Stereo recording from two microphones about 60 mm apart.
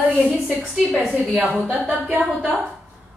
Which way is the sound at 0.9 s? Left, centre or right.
Centre.